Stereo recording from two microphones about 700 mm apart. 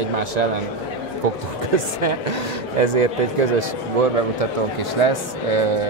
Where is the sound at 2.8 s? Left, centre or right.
Right.